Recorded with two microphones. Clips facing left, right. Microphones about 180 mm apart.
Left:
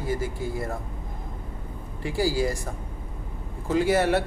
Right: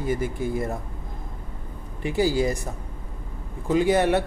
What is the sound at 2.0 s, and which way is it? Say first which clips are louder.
Speech: right 3 dB; 20° right (ahead or behind).